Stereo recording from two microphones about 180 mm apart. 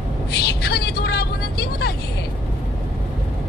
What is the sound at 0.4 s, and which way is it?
Vehicle, 65° left (ahead or behind).